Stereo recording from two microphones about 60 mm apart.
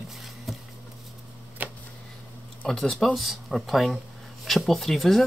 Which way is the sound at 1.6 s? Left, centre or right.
Right.